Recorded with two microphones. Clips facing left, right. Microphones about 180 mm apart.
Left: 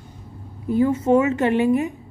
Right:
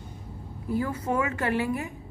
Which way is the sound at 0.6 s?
20° left (ahead or behind).